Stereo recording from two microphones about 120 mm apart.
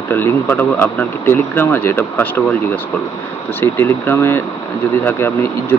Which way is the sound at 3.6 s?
20° left (ahead or behind).